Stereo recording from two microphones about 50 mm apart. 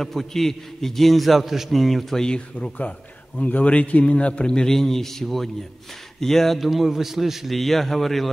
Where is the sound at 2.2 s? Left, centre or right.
Centre.